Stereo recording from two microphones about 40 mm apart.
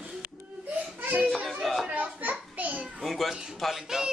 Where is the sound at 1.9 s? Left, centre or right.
Right.